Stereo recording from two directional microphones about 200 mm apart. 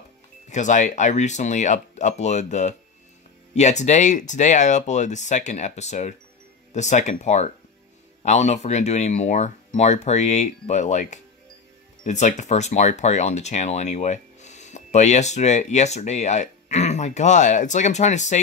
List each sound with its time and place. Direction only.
0.5 s speech: 35° left (ahead or behind)